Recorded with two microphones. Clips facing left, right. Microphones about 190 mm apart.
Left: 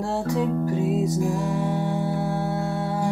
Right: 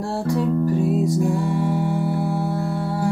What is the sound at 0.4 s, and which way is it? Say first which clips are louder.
Music: right 5 dB; 15° left (ahead or behind).